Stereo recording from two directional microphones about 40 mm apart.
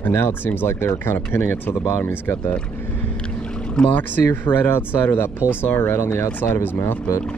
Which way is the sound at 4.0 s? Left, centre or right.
Left.